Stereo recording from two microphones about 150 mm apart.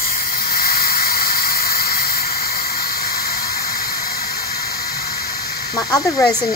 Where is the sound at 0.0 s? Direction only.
75° left (ahead or behind).